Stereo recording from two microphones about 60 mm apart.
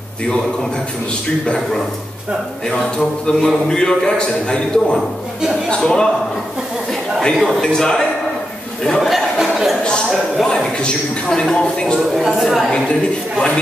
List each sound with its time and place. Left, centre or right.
2.7 s a man's voice: centre
6.9 s a sound: centre
7.6 s a man's voice: centre
9.0 s a sound: centre
10.0 s speech: centre
10.4 s a man's voice: centre
12.2 s a woman's voice: centre